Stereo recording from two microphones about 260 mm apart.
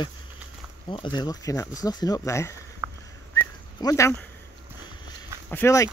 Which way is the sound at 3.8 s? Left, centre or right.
Centre.